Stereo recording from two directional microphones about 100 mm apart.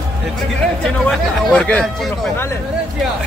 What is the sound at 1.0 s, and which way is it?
Speech, 10° left (ahead or behind).